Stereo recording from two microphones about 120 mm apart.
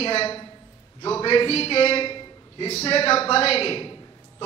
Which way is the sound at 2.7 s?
55° left (ahead or behind).